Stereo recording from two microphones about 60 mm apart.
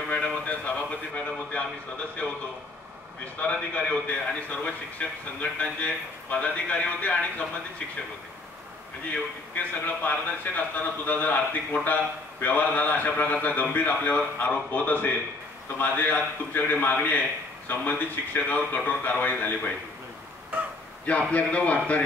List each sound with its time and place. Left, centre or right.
0.1 s a sound: left
3.3 s a man's voice: left
9.8 s a man's voice: left
21.0 s a man's voice: left